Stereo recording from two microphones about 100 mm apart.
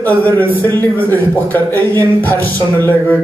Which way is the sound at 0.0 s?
15° left (ahead or behind).